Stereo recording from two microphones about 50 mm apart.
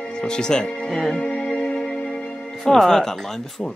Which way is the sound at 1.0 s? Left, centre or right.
Centre.